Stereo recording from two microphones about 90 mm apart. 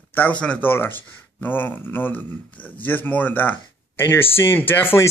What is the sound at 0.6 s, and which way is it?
Speech, 25° left (ahead or behind).